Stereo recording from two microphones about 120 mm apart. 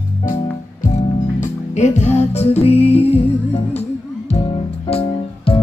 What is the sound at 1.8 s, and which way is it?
Music, 70° left (ahead or behind).